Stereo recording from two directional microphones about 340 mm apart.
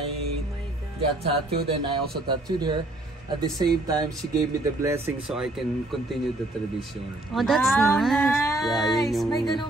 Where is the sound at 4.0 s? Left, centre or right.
Centre.